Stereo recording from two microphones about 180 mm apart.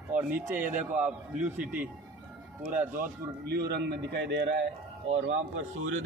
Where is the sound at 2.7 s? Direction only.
50° right (ahead or behind); by 4.7 s 70° right (ahead or behind).